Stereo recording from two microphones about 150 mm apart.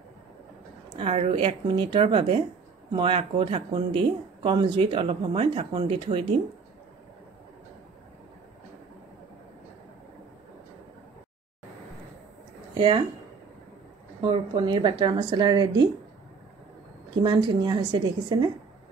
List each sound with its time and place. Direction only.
0.9 s speech: 45° right (ahead or behind)
12.7 s speech: 35° right (ahead or behind)
14.2 s a woman's voice: 35° right (ahead or behind)
17.2 s speech: 30° right (ahead or behind)